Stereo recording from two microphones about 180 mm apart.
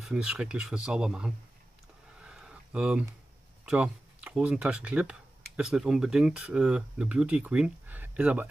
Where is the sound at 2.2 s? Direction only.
5° right (ahead or behind).